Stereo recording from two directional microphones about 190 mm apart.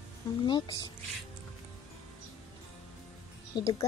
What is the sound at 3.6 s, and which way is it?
Speech, 20° left (ahead or behind).